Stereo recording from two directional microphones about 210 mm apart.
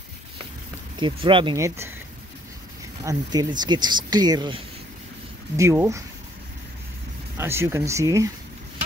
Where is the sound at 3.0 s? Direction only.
20° right (ahead or behind).